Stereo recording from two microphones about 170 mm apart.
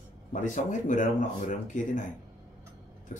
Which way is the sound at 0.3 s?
50° left (ahead or behind).